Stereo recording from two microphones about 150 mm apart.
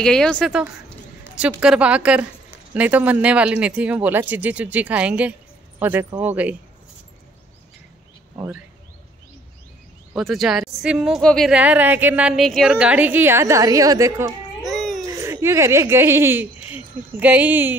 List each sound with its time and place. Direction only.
0.0 s a woman's voice: 5° left (ahead or behind)
10.1 s a woman's voice: centre (ahead or behind); by 14.3 s 20° right (ahead or behind)
14.6 s babbling: centre (ahead or behind)
15.0 s a woman's voice: 20° right (ahead or behind)